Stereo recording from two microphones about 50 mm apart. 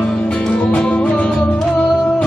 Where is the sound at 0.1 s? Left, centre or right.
Left.